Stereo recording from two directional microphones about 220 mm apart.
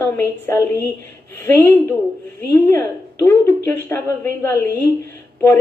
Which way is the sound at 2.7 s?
10° left (ahead or behind).